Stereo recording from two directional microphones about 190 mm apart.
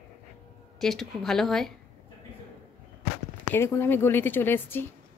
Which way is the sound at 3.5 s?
15° left (ahead or behind).